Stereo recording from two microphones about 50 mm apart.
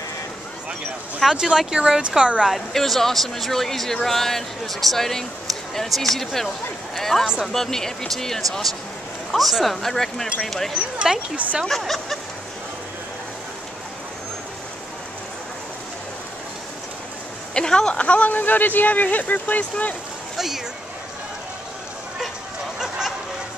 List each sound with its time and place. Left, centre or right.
1.3 s speech: centre
2.5 s speech: centre
11.3 s speech: right
11.8 s speech: centre
17.6 s speech: centre
18.0 s speech: left
20.3 s speech: centre
22.8 s a sound: centre